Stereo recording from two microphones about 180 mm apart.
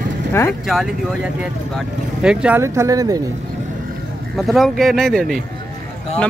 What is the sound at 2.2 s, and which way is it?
Speech, 10° right (ahead or behind).